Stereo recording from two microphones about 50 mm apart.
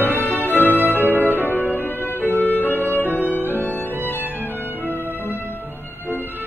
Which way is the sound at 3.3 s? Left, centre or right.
Left.